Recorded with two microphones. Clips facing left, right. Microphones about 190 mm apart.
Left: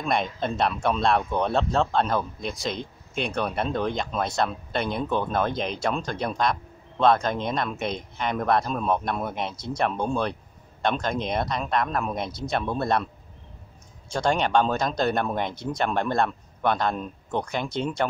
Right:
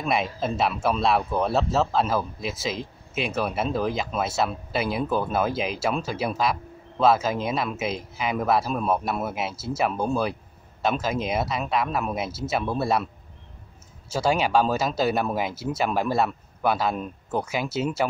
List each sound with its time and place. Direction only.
0.0 s speech: 5° right (ahead or behind)